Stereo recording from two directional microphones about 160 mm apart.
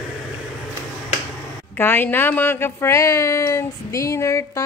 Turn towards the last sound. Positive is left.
turn(degrees=20)  # may be behind; listen again after turning